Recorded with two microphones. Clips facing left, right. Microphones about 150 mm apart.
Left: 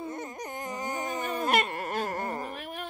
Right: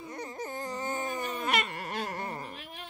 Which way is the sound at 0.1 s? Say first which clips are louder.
Left 1 dB; 20° left (ahead or behind).